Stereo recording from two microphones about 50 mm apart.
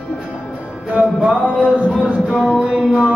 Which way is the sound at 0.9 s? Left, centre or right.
Right.